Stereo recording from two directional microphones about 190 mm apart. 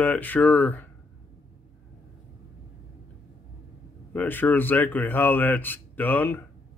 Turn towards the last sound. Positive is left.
turn(degrees=10)  # may be behind; listen again after turning